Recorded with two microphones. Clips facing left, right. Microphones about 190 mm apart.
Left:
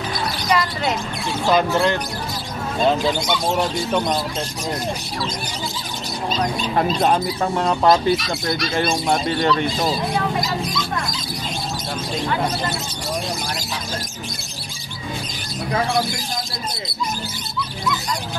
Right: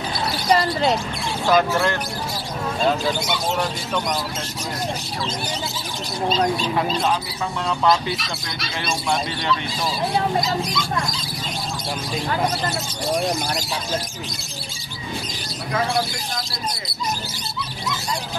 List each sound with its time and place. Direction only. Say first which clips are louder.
0.5 s a sound: right 3 dB; 35° right (ahead or behind)
1.5 s speech: left 1 dB; 20° left (ahead or behind)
7.0 s speech: left 4 dB; 50° left (ahead or behind)